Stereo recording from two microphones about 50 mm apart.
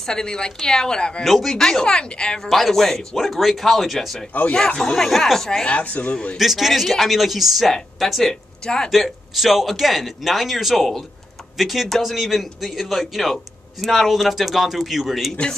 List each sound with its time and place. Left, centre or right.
0.0 s speech: centre
1.2 s speech: centre
2.5 s a man's voice: centre
4.3 s speech: left
4.7 s speech: centre
5.7 s speech: left
6.3 s a man's voice: centre
8.9 s a man's voice: centre